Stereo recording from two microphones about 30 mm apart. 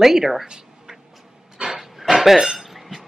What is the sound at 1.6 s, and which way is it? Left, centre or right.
Dog, right.